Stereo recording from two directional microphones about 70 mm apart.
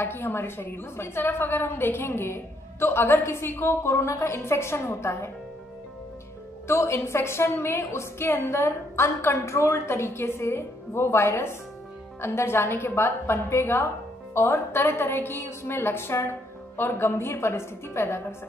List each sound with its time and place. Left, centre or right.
0.0 s a woman's voice: left
6.7 s a woman's voice: left